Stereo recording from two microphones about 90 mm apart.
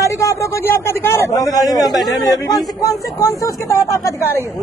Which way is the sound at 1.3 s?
40° left (ahead or behind).